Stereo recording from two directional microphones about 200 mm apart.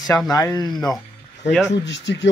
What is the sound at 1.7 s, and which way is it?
Speech, 60° left (ahead or behind).